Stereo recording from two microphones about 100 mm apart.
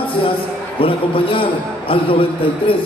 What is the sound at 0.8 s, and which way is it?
A man's voice, 65° left (ahead or behind).